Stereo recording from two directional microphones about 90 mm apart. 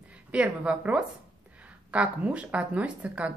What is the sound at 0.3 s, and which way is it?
Speech, 15° right (ahead or behind).